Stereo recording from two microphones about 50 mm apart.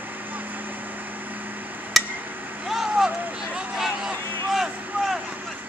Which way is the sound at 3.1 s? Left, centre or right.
Right.